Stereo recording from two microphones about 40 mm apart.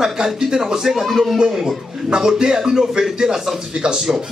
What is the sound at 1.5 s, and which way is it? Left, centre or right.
Speech, centre.